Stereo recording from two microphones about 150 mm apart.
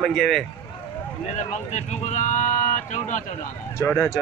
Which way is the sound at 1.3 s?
50° left (ahead or behind).